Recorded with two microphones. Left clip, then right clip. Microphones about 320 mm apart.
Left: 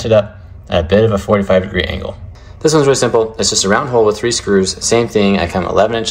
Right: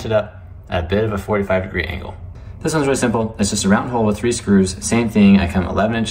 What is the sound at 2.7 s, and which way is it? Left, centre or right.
Speech, centre.